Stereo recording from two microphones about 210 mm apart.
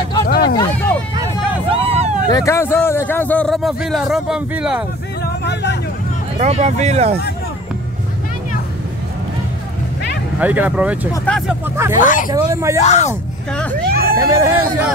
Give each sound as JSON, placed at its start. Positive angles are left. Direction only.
{"t": 0.3, "sound": "hubbub", "side_deg": 50}
{"t": 1.7, "sound": "vehicle", "side_deg": -30}
{"t": 2.3, "sound": "a man's voice", "side_deg": 15}
{"t": 5.2, "sound": "a sound", "side_deg": 55}
{"t": 6.3, "sound": "speech", "side_deg": -30}
{"t": 10.4, "sound": "speech", "side_deg": -10}
{"t": 11.7, "sound": "speech", "side_deg": -10}
{"t": 12.0, "sound": "speech", "side_deg": 40}
{"t": 12.4, "sound": "speech", "side_deg": -10}
{"t": 12.8, "sound": "speech", "side_deg": 35}
{"t": 13.5, "sound": "speech", "side_deg": 5}
{"t": 13.8, "sound": "vehicle", "side_deg": -45}
{"t": 14.1, "sound": "speech", "side_deg": -15}